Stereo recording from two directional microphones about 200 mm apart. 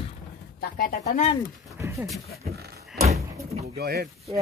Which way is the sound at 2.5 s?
50° right (ahead or behind).